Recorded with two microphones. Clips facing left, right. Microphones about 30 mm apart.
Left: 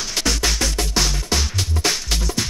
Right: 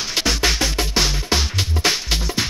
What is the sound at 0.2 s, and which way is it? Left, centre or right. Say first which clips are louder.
Music: right 2 dB; centre.